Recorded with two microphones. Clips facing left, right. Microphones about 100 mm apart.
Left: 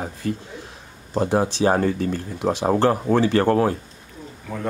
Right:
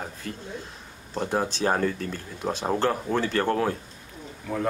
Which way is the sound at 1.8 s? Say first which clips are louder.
Left 5 dB; 65° left (ahead or behind).